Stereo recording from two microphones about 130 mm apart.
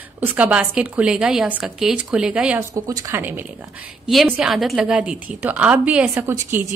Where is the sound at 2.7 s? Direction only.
25° right (ahead or behind).